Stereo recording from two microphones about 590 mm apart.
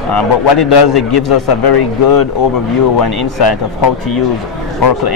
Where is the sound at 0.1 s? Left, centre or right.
Left.